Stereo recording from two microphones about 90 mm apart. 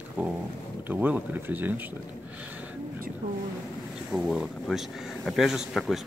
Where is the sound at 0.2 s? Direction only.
20° right (ahead or behind).